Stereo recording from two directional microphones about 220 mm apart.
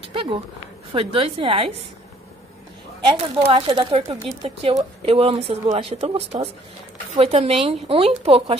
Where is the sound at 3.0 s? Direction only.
25° right (ahead or behind).